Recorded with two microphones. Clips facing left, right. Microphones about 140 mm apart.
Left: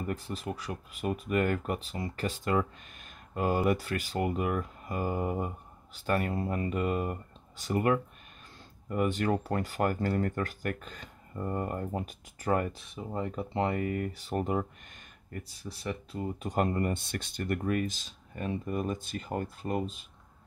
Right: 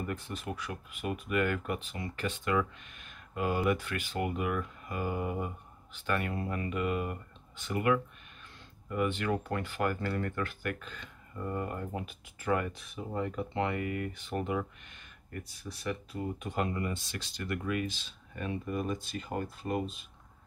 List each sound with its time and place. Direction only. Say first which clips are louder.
0.0 s speech: left 2 dB; 35° left (ahead or behind)
15.7 s speech: even; 30° left (ahead or behind)
16.5 s speech: left 5 dB; 45° left (ahead or behind); by 19.8 s 30° left (ahead or behind)